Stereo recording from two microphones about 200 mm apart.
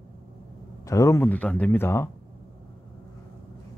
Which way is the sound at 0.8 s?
15° left (ahead or behind).